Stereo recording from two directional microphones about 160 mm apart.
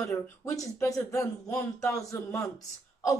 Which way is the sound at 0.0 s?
20° left (ahead or behind).